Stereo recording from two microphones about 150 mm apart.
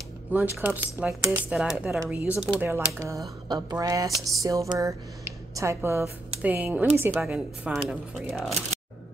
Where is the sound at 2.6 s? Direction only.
15° right (ahead or behind).